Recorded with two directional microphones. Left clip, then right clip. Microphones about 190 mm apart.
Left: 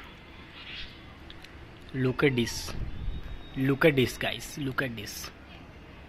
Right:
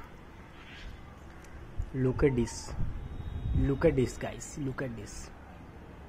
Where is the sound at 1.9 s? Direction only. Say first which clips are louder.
Left 2 dB; 5° left (ahead or behind).